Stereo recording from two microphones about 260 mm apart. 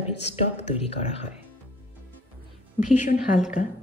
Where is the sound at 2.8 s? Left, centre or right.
Left.